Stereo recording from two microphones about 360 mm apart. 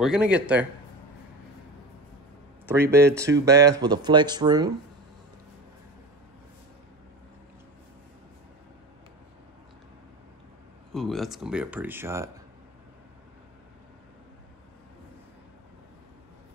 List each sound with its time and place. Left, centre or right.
0.0 s speech: centre
2.6 s speech: centre
10.9 s speech: centre